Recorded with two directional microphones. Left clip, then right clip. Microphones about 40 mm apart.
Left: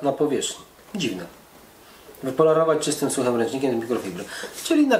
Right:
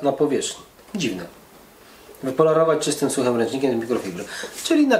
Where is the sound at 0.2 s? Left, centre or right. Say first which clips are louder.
Right 2 dB; right.